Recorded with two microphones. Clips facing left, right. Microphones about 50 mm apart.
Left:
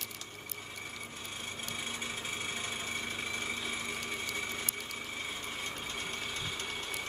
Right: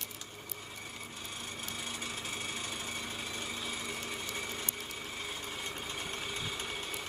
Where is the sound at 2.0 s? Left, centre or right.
Left.